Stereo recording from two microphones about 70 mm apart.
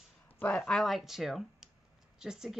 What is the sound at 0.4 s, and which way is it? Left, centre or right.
Speech, centre.